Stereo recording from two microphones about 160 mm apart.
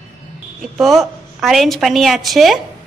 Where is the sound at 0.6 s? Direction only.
Centre (ahead or behind).